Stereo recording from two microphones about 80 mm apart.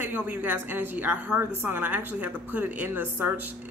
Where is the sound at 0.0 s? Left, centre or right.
Right.